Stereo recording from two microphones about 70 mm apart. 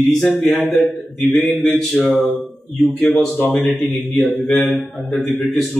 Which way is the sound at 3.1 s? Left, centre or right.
Centre.